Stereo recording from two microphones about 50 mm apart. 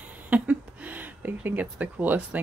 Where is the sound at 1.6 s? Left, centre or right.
Right.